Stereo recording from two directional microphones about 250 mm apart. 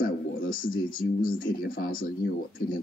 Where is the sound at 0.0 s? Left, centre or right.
Left.